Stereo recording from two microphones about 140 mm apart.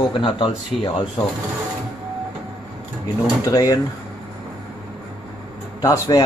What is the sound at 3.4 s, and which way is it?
Speech, 25° left (ahead or behind).